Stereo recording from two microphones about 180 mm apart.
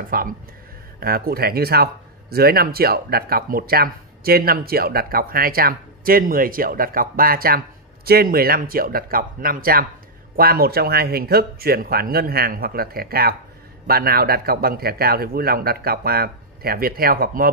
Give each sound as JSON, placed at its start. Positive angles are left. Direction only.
{"t": 0.1, "sound": "speech", "side_deg": -55}